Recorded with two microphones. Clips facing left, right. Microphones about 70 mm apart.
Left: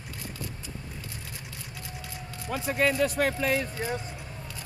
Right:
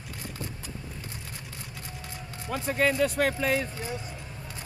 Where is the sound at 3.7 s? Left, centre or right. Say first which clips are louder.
Left 4 dB; left.